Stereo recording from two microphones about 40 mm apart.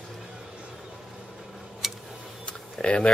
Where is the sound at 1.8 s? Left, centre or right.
Centre.